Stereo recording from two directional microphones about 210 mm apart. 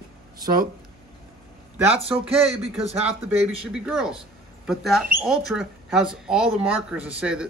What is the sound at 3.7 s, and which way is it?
Speech, 5° right (ahead or behind).